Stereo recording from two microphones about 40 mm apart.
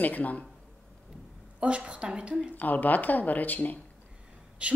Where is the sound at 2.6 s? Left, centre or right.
Left.